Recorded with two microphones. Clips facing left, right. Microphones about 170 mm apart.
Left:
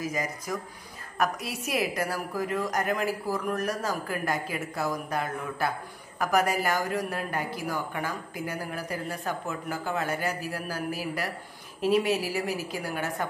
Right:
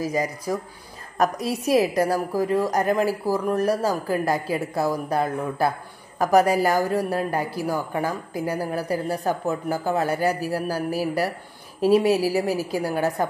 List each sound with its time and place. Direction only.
0.0 s a woman's voice: 35° right (ahead or behind)